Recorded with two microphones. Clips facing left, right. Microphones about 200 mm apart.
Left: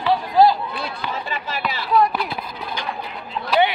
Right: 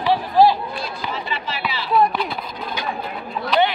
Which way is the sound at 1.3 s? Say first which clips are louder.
Even; 50° left (ahead or behind).